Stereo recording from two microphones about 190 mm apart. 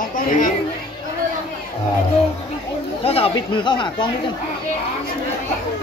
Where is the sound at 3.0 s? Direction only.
30° left (ahead or behind).